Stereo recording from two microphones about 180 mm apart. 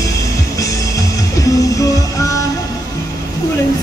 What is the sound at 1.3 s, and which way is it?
Music, 20° left (ahead or behind).